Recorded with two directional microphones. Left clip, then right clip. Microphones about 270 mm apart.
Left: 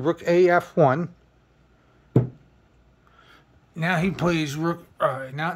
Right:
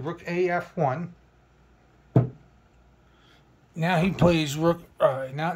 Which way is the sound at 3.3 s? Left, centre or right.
Centre.